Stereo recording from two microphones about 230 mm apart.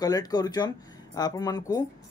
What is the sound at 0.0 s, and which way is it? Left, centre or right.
Speech, centre.